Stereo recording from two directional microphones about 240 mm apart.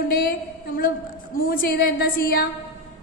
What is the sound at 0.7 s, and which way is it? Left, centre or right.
A woman's voice, left.